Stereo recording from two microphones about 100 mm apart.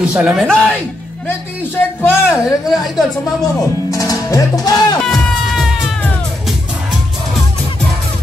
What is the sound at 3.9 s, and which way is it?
Speech, 35° left (ahead or behind).